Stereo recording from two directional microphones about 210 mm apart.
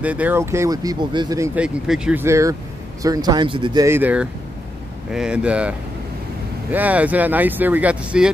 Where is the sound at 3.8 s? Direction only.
10° right (ahead or behind).